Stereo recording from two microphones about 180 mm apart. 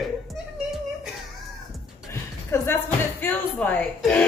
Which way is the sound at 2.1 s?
15° left (ahead or behind).